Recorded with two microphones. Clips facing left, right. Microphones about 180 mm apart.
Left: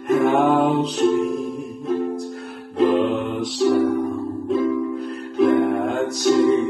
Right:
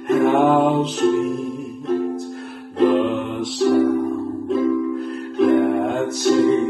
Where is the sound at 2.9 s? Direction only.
Centre (ahead or behind).